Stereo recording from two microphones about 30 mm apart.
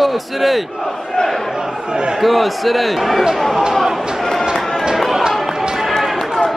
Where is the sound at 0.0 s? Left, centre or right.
Centre.